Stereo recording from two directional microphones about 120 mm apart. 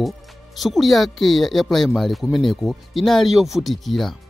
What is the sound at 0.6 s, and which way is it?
Speech, centre (ahead or behind).